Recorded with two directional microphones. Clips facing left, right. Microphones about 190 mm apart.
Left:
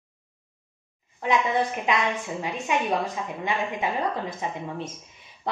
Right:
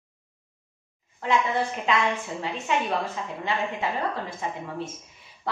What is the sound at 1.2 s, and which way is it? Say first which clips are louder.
A woman's voice: left 1 dB; 15° left (ahead or behind).